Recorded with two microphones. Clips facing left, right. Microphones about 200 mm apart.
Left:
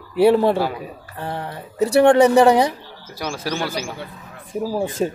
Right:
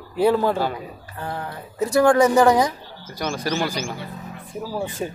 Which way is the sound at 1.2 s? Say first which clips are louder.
Left 2 dB; 25° left (ahead or behind).